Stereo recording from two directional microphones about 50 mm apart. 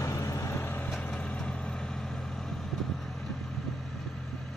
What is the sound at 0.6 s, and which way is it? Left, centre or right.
Vehicle, left.